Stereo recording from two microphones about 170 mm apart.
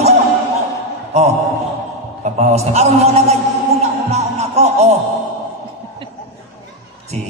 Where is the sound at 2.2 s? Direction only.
40° right (ahead or behind).